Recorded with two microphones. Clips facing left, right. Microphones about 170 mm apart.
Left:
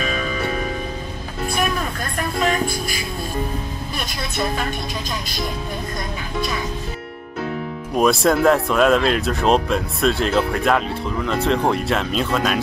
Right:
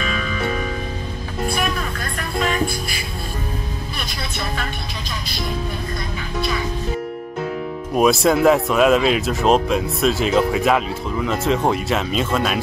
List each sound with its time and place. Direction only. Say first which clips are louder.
0.0 s music: left 1 dB; 40° left (ahead or behind)
2.1 s music: left 1 dB; 45° left (ahead or behind)
7.9 s speech: right 1 dB; 5° right (ahead or behind)